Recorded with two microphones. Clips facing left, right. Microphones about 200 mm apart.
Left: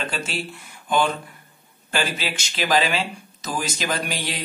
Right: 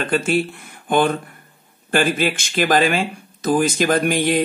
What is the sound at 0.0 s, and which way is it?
A man's voice, 50° right (ahead or behind).